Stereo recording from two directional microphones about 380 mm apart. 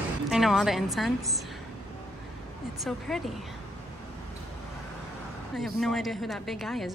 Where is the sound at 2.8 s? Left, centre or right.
Centre.